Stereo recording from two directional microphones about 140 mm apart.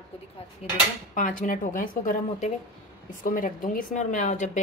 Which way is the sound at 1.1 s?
70° left (ahead or behind).